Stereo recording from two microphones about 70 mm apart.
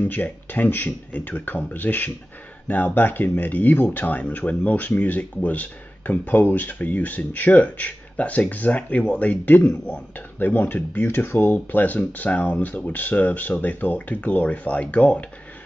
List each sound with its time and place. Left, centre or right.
0.0 s speech: left